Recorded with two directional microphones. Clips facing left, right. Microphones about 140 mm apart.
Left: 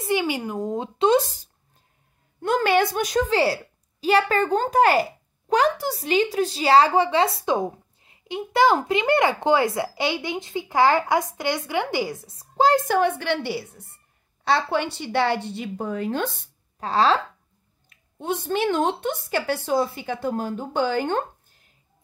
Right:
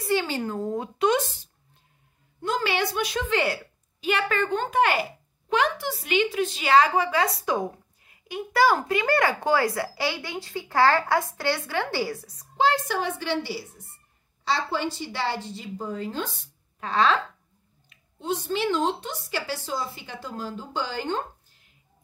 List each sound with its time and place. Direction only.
0.0 s a woman's voice: 15° left (ahead or behind); by 1.5 s 40° left (ahead or behind)
2.4 s a woman's voice: 55° left (ahead or behind); by 12.4 s 25° left (ahead or behind)
12.5 s speech: 45° left (ahead or behind); by 16.4 s 60° left (ahead or behind)
16.8 s speech: 35° left (ahead or behind)
17.8 s speech: 55° left (ahead or behind)